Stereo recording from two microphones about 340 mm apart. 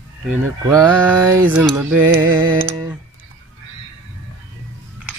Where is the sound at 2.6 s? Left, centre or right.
Centre.